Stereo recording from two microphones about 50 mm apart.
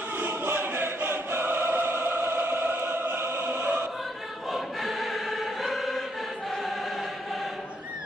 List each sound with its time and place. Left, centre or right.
0.2 s choir: right
3.4 s opera: right
4.5 s choir: centre